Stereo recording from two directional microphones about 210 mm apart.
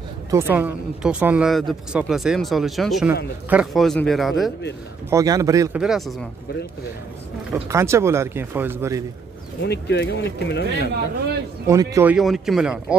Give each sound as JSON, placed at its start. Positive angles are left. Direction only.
{"t": 0.3, "sound": "speech", "side_deg": -10}
{"t": 5.1, "sound": "speech", "side_deg": -15}
{"t": 5.8, "sound": "speech", "side_deg": 0}
{"t": 7.5, "sound": "speech", "side_deg": -15}
{"t": 9.6, "sound": "speech", "side_deg": 50}
{"t": 11.6, "sound": "speech", "side_deg": -15}